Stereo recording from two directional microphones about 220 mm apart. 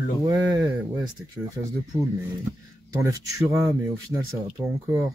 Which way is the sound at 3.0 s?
15° right (ahead or behind).